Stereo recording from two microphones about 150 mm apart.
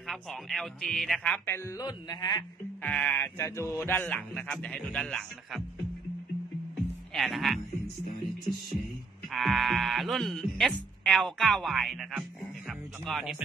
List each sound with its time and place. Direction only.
0.0 s speech: centre (ahead or behind)
1.8 s speech: 25° left (ahead or behind)
2.8 s a sound: 10° left (ahead or behind)
7.2 s speech: centre (ahead or behind)
9.3 s speech: centre (ahead or behind)